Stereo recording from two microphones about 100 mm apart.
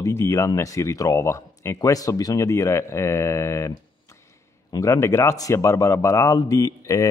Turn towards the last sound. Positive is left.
turn(degrees=35)  # may be behind; listen again after turning